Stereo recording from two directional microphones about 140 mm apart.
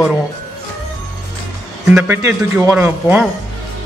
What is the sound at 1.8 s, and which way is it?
A man's voice, 15° right (ahead or behind).